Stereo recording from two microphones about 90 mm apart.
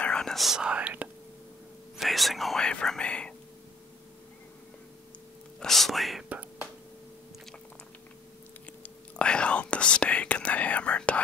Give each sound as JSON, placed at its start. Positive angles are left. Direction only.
{"t": 0.0, "sound": "speech", "side_deg": 10}
{"t": 2.0, "sound": "speech", "side_deg": 0}
{"t": 5.6, "sound": "speech", "side_deg": 0}
{"t": 6.2, "sound": "whispering", "side_deg": -15}
{"t": 8.8, "sound": "whispering", "side_deg": 10}